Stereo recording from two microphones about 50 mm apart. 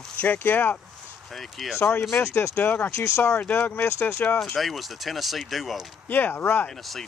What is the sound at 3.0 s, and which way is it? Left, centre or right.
Speech, left.